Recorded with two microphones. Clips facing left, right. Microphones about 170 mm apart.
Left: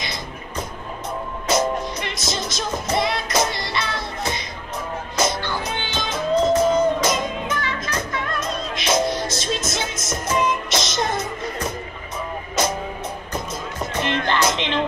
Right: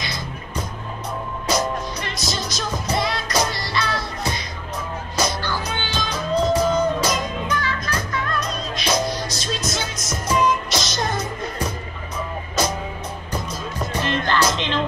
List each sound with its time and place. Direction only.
1.5 s music: 20° left (ahead or behind)
13.5 s music: 20° left (ahead or behind)